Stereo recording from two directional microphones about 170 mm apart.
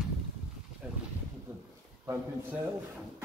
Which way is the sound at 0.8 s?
5° right (ahead or behind).